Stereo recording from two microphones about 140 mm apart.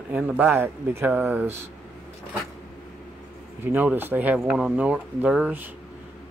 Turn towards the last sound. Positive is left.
turn(degrees=-5)  # may be behind; listen again after turning